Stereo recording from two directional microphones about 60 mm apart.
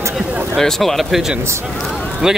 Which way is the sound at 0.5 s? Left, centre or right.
Centre.